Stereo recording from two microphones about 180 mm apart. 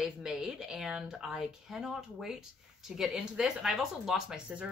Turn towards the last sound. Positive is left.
turn(degrees=-5)  # may be behind; listen again after turning